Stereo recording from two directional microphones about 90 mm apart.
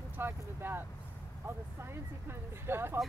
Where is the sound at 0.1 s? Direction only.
25° right (ahead or behind).